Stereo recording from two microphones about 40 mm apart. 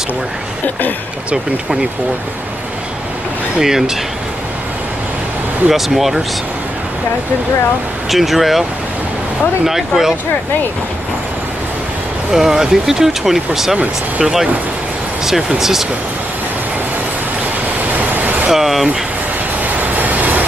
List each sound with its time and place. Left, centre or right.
1.3 s speech: centre
3.5 s speech: centre
5.7 s speech: centre
8.1 s speech: centre
9.7 s speech: centre
12.3 s speech: centre
18.1 s vehicle: right
18.5 s speech: centre
19.6 s train: right